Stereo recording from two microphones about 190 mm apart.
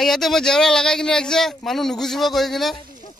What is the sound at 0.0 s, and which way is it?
Speech, centre (ahead or behind).